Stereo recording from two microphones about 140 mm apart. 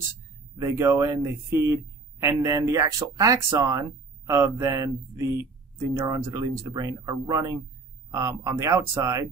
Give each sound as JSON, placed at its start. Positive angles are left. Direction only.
{"t": 0.6, "sound": "speech", "side_deg": -20}